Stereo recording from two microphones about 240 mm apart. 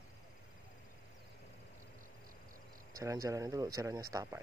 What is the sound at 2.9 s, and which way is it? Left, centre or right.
Speech, centre.